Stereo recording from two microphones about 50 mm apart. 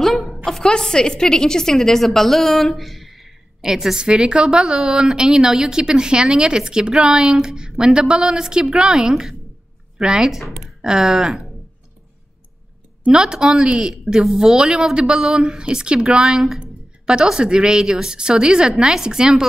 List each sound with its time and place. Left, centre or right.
0.0 s a sound: centre
0.5 s a woman's voice: centre
13.1 s a woman's voice: centre